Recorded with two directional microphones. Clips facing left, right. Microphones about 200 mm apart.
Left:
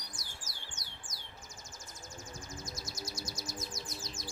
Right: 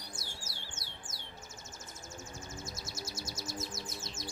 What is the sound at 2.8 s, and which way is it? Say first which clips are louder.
Music: even; 25° right (ahead or behind).